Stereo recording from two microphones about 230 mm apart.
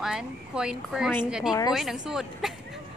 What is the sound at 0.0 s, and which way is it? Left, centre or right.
Speech, centre.